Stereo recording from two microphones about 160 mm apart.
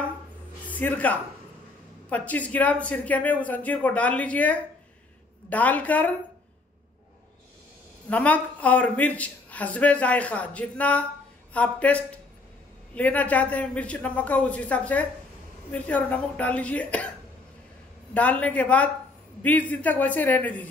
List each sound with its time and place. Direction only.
0.7 s speech: 10° left (ahead or behind)
8.1 s speech: 10° left (ahead or behind)
18.1 s speech: 10° left (ahead or behind)